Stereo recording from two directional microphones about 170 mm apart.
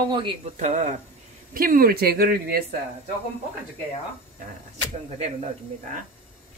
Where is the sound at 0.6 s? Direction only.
45° right (ahead or behind).